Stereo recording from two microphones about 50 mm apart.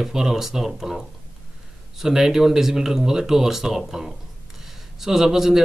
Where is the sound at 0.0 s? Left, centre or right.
Centre.